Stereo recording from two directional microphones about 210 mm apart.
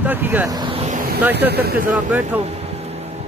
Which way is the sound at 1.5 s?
45° right (ahead or behind).